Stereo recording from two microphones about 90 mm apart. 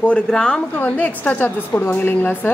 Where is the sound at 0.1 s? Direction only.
10° left (ahead or behind).